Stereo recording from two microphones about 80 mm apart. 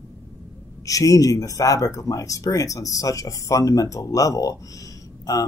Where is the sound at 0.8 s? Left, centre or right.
Left.